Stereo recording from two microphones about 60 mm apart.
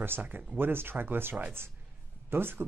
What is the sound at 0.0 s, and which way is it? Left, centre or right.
Speech, right.